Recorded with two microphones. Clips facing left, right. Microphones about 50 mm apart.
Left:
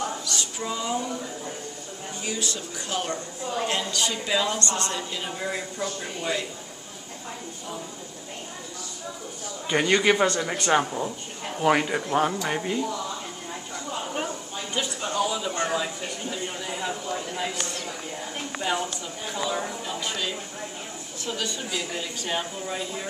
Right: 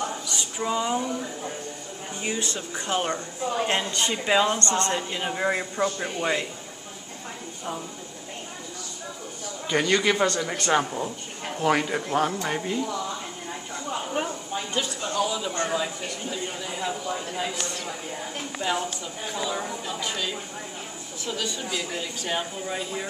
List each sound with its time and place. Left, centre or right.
0.3 s a sound: centre
2.2 s a woman's voice: right
9.7 s speech: centre
15.0 s speech: centre
21.3 s speech: centre